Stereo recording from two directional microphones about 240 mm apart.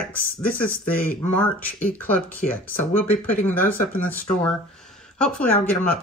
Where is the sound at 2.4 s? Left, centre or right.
Left.